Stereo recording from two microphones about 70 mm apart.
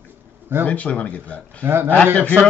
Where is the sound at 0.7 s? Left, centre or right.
Centre.